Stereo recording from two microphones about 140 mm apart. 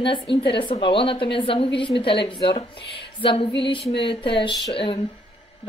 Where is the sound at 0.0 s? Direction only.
35° left (ahead or behind).